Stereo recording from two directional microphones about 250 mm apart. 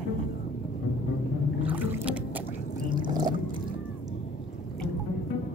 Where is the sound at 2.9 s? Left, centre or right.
Centre.